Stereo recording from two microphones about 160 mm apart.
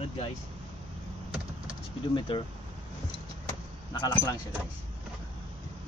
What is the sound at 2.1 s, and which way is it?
Speech, 30° left (ahead or behind).